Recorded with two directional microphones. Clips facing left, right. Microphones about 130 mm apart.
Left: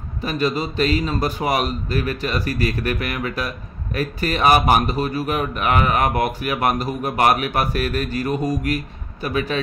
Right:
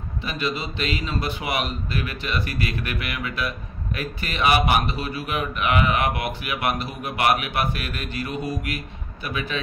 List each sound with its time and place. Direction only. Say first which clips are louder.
0.2 s a man's voice: left 6 dB; 40° left (ahead or behind)